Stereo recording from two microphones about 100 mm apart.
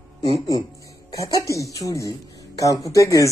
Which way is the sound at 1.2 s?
35° left (ahead or behind).